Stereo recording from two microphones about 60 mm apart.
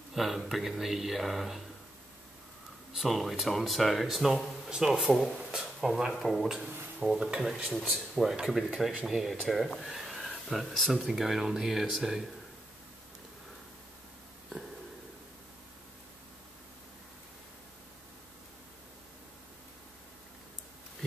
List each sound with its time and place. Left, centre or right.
0.1 s speech: centre
2.9 s speech: centre
7.0 s speech: centre
7.7 s speech: centre